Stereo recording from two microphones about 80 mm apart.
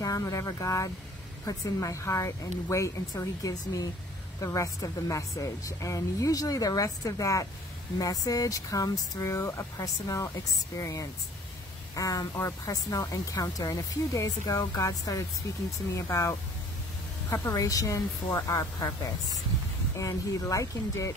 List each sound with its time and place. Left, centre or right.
0.0 s speech: left